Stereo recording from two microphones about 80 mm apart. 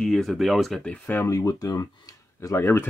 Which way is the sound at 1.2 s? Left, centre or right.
Left.